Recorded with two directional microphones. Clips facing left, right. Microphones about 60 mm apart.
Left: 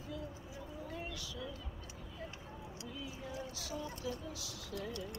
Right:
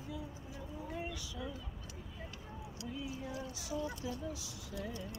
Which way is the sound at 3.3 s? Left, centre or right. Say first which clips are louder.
Right 1 dB; right.